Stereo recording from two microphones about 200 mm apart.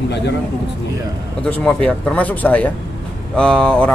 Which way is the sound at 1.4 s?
5° left (ahead or behind).